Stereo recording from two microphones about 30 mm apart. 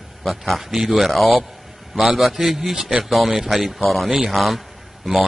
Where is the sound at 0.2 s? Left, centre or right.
Centre.